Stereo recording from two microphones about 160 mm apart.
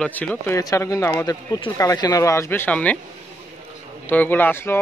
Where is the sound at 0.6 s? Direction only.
20° left (ahead or behind).